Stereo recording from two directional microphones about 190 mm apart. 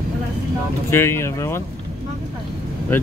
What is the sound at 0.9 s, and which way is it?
Speech, 15° left (ahead or behind).